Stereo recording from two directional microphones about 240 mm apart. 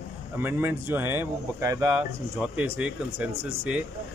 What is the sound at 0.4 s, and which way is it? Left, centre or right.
A man's voice, centre.